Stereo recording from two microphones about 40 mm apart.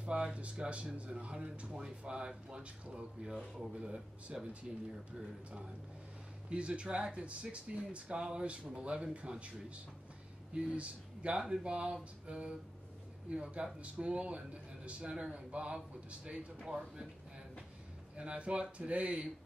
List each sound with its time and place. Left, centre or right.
0.1 s a sound: right
0.6 s speech: right
6.5 s speech: right
10.5 s speech: right
18.1 s speech: right